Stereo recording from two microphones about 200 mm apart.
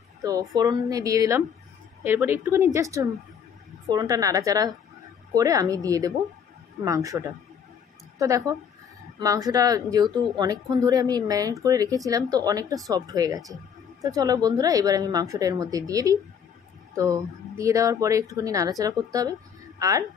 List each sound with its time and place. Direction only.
0.2 s speech: 15° right (ahead or behind)